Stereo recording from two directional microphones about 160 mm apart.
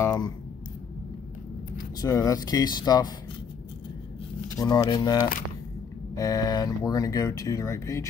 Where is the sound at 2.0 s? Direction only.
25° left (ahead or behind).